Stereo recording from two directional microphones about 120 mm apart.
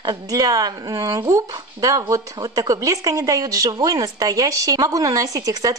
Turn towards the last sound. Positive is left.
turn(degrees=-30)  # may be behind; listen again after turning